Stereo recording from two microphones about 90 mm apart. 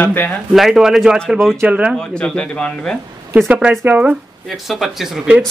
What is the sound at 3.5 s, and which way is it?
Speech, 15° right (ahead or behind).